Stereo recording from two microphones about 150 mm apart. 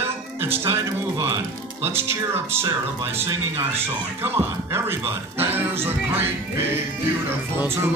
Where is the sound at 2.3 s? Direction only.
15° right (ahead or behind).